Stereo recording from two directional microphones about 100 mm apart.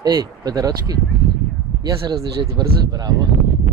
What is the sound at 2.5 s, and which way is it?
Speech, 35° right (ahead or behind).